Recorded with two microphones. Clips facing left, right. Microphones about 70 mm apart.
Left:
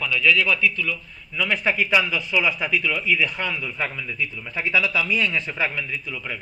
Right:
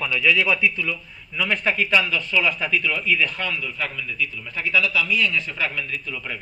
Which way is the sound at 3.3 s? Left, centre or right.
Centre.